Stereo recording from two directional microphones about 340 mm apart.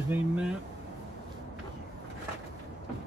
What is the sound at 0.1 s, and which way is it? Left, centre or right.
Speech, centre.